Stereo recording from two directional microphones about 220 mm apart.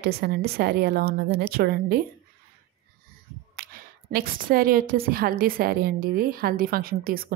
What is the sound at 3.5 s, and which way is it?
A woman's voice, 45° right (ahead or behind).